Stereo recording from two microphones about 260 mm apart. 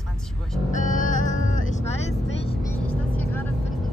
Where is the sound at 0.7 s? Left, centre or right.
Left.